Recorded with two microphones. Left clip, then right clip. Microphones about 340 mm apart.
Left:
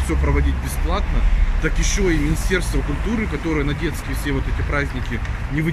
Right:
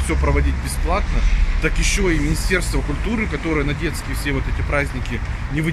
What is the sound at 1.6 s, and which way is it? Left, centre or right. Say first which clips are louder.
Speech: right 2 dB; centre.